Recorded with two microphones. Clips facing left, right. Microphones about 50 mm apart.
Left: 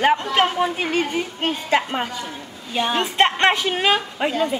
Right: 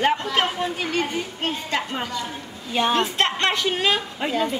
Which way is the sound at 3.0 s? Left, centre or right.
Centre.